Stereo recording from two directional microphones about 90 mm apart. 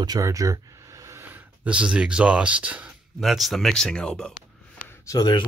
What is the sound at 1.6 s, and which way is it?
Speech, 15° right (ahead or behind).